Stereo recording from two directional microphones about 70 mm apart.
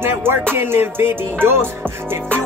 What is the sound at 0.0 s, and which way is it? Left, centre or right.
Music, right.